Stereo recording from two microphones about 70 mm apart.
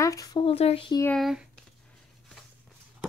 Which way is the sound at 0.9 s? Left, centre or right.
Left.